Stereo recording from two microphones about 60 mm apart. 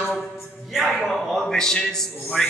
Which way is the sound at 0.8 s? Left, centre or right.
Centre.